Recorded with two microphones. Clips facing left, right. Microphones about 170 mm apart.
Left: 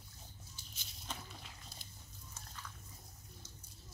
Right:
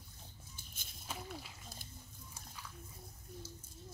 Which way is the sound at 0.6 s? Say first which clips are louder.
Even; 50° right (ahead or behind).